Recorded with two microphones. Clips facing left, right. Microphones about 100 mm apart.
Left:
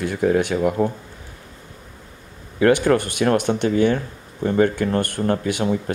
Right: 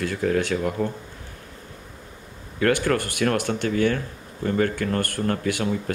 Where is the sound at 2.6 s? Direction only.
20° left (ahead or behind).